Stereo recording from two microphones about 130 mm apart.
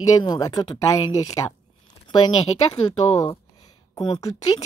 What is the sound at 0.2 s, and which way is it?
Speech, 30° left (ahead or behind).